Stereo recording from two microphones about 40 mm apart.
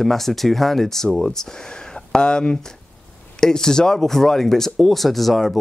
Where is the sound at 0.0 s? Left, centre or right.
Centre.